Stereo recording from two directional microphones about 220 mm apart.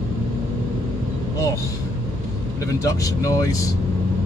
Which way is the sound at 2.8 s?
15° left (ahead or behind).